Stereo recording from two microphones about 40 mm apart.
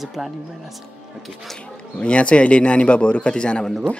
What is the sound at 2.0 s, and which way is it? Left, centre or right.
A man's voice, left.